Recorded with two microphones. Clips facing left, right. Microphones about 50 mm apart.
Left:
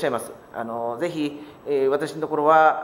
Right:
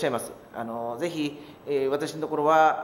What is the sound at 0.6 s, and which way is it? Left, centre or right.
Speech, centre.